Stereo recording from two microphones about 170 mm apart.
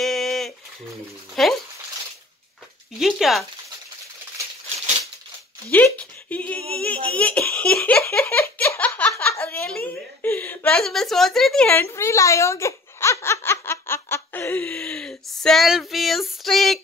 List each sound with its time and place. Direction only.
0.0 s a sound: centre (ahead or behind)
1.4 s speech: centre (ahead or behind)
3.0 s speech: centre (ahead or behind)
5.7 s a woman's voice: 10° left (ahead or behind)